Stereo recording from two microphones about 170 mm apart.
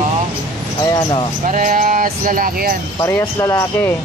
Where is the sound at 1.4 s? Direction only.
50° right (ahead or behind).